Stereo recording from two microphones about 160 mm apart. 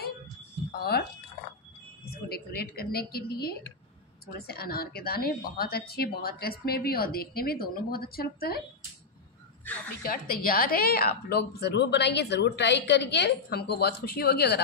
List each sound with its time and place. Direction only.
0.7 s a sound: 80° left
2.0 s a woman's voice: 80° left
9.6 s a woman's voice: 10° left (ahead or behind)
10.0 s a woman's voice: 65° left (ahead or behind); by 14.6 s 80° left